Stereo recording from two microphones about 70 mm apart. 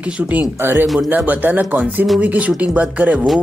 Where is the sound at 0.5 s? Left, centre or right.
Right.